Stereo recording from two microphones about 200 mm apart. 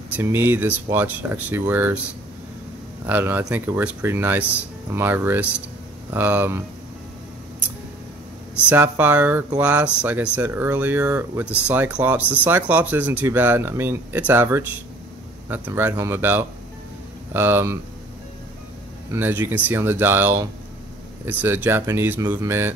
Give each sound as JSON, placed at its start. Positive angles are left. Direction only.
{"t": 0.1, "sound": "speech", "side_deg": -10}
{"t": 3.1, "sound": "speech", "side_deg": -10}
{"t": 8.6, "sound": "speech", "side_deg": -10}
{"t": 19.1, "sound": "speech", "side_deg": -10}